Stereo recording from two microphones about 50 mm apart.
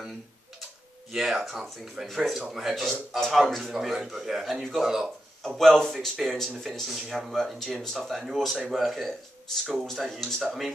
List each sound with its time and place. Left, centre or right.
1.1 s a man's voice: centre
2.7 s a man's voice: centre
5.6 s speech: centre
7.3 s speech: centre